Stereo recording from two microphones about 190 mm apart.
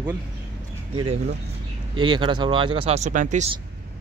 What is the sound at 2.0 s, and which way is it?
Speech, 25° right (ahead or behind).